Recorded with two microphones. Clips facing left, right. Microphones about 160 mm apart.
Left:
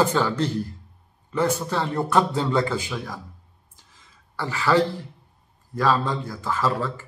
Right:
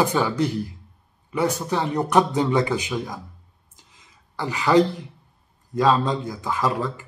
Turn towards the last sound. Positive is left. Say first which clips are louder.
# right 1 dB
turn(degrees=-15)  # may be behind; listen again after turning